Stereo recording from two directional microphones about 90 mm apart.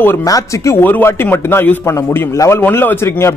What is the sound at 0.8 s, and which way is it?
A man's voice, 25° left (ahead or behind).